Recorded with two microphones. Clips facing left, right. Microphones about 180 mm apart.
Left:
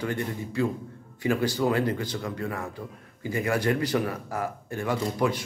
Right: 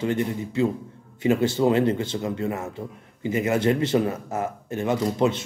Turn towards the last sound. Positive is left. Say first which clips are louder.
# right 4 dB
turn(degrees=-25)  # may be behind; listen again after turning